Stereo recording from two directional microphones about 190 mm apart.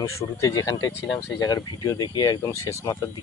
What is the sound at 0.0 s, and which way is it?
Speech, 15° left (ahead or behind).